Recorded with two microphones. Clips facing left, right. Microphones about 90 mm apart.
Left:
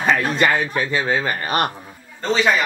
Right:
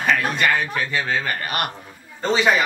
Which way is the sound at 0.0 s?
25° left (ahead or behind).